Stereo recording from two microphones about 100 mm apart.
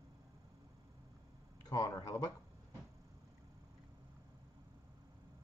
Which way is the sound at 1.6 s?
40° left (ahead or behind).